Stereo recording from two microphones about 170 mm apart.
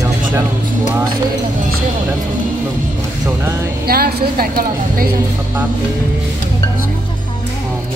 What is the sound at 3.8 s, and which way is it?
A woman's voice, 65° right (ahead or behind).